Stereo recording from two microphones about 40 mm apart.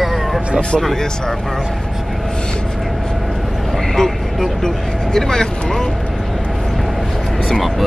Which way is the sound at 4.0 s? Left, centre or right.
Centre.